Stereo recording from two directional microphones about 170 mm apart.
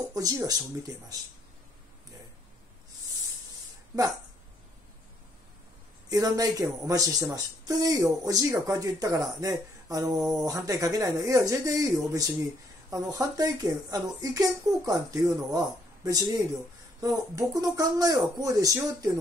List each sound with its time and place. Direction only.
0.1 s speech: 20° right (ahead or behind)
6.0 s speech: 20° right (ahead or behind)